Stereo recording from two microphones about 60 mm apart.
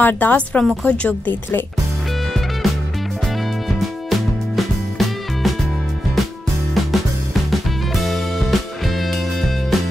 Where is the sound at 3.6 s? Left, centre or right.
Centre.